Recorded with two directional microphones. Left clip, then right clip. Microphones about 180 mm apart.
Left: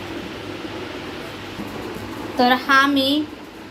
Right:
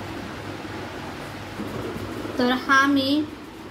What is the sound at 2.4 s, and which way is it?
Speech, 35° left (ahead or behind).